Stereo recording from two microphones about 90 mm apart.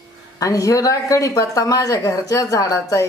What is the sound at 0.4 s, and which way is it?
A woman's voice, 40° left (ahead or behind).